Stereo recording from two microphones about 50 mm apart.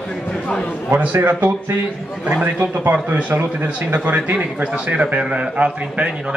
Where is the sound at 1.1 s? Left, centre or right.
Right.